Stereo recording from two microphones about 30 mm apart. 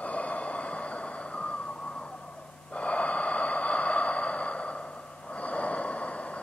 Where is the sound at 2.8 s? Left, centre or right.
Left.